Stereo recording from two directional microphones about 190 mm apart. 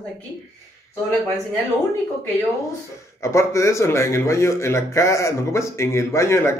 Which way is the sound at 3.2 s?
15° left (ahead or behind).